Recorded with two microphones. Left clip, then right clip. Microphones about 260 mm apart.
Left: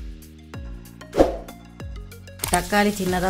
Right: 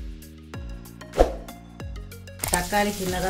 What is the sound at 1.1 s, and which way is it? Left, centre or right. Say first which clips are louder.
Music: left 3 dB; centre.